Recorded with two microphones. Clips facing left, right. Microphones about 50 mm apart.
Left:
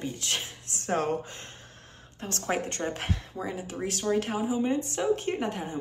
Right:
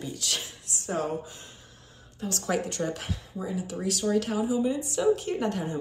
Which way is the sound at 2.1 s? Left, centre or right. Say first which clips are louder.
Right 1 dB; left.